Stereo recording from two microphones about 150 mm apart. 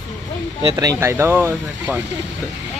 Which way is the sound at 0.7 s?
20° right (ahead or behind).